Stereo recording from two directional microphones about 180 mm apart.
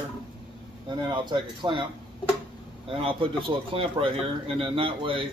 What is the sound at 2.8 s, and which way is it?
A man's voice, 30° right (ahead or behind).